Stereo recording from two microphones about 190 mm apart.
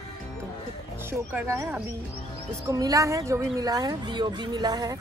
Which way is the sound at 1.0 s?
15° right (ahead or behind).